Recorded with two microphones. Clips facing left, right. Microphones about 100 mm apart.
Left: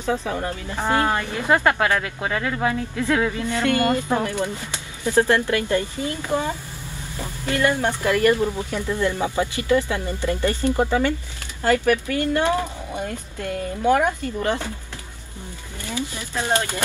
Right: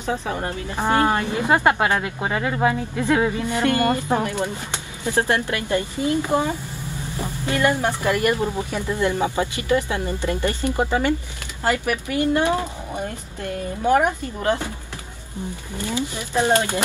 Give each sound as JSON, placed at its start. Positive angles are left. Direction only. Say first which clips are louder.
{"t": 0.0, "sound": "speech", "louder": "left 1 dB", "side_deg": -20}
{"t": 16.3, "sound": "speech", "louder": "right 4 dB", "side_deg": -20}